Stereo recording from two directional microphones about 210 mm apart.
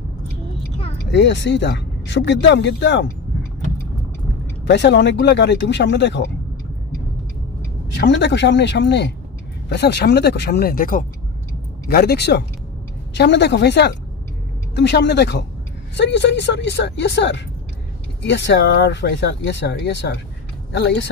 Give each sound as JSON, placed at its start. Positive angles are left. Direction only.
{"t": 1.1, "sound": "speech", "side_deg": 55}
{"t": 4.6, "sound": "speech", "side_deg": 55}
{"t": 7.9, "sound": "speech", "side_deg": 55}